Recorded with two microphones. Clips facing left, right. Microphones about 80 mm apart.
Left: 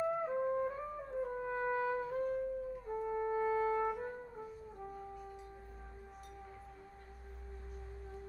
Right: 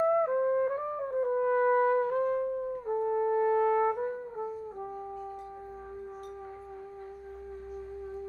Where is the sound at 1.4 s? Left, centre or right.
Right.